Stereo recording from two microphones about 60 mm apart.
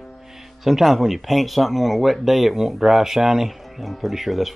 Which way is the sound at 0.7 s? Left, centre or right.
Centre.